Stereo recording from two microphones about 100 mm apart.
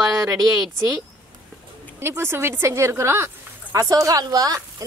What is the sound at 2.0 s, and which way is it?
Speech, 25° right (ahead or behind).